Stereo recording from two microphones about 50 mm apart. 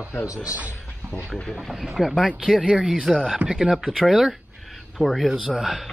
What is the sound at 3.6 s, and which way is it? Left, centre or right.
Speech, centre.